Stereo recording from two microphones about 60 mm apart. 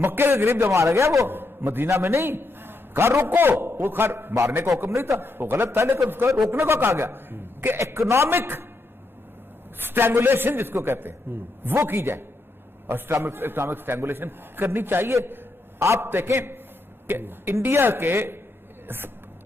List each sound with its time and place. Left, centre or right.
0.0 s a man's voice: right
1.3 s a man's voice: right
7.8 s a man's voice: right
9.8 s a man's voice: right